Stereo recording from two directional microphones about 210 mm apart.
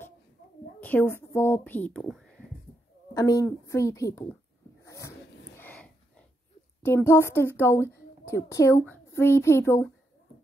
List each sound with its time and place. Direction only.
0.7 s a sound: 10° left (ahead or behind)
1.1 s speech: 10° left (ahead or behind)
3.2 s speech: 15° left (ahead or behind)
4.8 s dog: 15° left (ahead or behind)
5.6 s a sound: 5° left (ahead or behind)
6.8 s a woman's voice: 10° left (ahead or behind)